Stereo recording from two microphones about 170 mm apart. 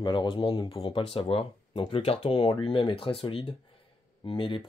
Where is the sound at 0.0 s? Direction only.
30° left (ahead or behind).